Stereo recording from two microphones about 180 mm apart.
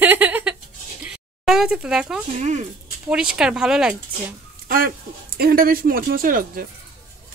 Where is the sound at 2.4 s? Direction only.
40° right (ahead or behind).